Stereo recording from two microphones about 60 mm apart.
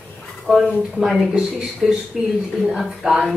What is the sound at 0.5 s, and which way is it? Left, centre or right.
Speech, centre.